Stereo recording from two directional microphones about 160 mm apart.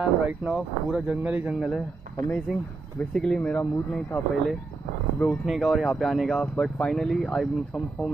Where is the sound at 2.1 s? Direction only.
65° right (ahead or behind).